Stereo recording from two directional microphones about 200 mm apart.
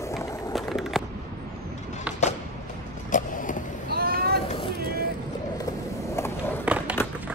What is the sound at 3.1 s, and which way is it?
Vehicle, 40° left (ahead or behind).